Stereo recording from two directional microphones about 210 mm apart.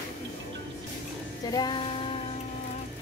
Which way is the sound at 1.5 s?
20° left (ahead or behind).